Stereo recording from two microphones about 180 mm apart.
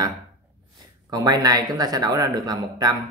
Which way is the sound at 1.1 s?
20° right (ahead or behind).